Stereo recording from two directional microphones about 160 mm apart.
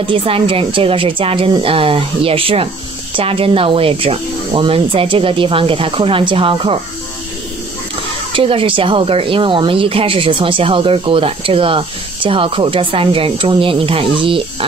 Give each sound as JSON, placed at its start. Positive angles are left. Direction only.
{"t": 0.0, "sound": "speech", "side_deg": -35}
{"t": 8.3, "sound": "speech", "side_deg": -35}